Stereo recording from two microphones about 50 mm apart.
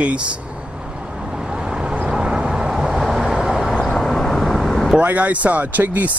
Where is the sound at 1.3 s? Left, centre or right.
Centre.